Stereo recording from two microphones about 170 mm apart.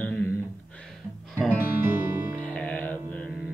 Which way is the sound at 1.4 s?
10° right (ahead or behind).